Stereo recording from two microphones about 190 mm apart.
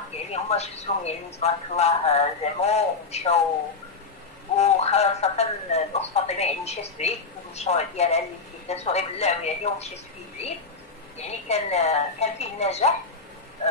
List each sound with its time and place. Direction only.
0.3 s speech: 35° left (ahead or behind)
4.6 s speech: 35° left (ahead or behind)
11.1 s speech: 35° left (ahead or behind)